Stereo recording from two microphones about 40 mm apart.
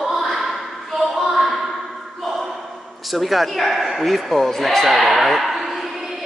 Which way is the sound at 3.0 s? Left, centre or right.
Centre.